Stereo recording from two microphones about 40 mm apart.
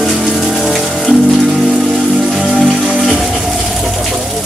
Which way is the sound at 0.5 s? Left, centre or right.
Centre.